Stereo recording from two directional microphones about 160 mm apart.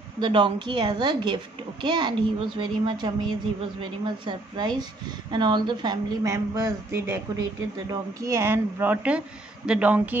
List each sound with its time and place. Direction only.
0.2 s a woman's voice: 30° right (ahead or behind); by 10.1 s 10° right (ahead or behind)